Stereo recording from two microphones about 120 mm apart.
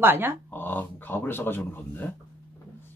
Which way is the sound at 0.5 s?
15° left (ahead or behind).